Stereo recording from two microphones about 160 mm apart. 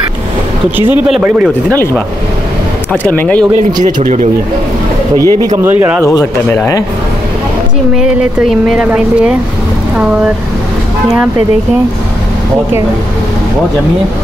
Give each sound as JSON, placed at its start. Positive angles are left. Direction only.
{"t": 0.7, "sound": "speech", "side_deg": -10}
{"t": 2.9, "sound": "speech", "side_deg": 10}
{"t": 3.8, "sound": "speech", "side_deg": -50}
{"t": 5.1, "sound": "speech", "side_deg": 20}
{"t": 5.6, "sound": "speech", "side_deg": -15}
{"t": 6.5, "sound": "speech", "side_deg": 10}
{"t": 8.0, "sound": "speech", "side_deg": -5}